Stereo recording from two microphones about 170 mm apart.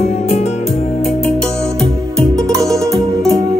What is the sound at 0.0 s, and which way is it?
Music, 40° left (ahead or behind).